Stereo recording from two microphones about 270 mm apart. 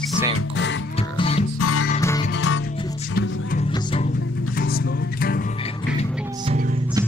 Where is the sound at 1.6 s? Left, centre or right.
Left.